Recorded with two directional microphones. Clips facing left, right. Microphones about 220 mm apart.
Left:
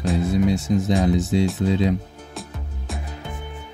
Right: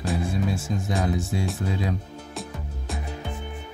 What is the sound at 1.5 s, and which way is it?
Speech, 20° left (ahead or behind).